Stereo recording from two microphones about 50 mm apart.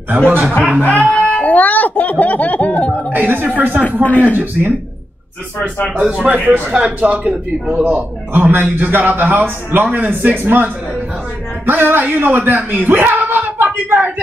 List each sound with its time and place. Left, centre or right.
0.3 s speech: right
0.8 s speech: left
3.1 s speech: right
4.0 s speech: left
6.2 s a man's voice: right
7.8 s a man's voice: right